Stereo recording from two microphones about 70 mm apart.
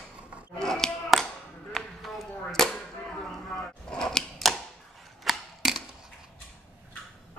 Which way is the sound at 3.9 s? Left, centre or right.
Centre.